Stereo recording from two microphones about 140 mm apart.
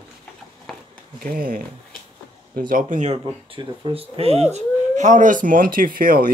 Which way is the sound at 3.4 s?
35° right (ahead or behind).